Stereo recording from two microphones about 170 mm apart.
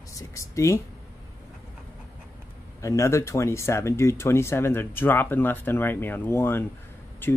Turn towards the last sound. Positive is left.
turn(degrees=10)  # may be behind; listen again after turning